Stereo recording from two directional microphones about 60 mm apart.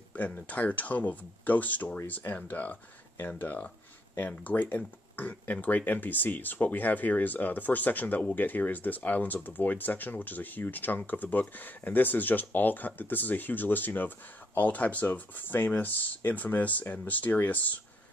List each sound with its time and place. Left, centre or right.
0.1 s speech: left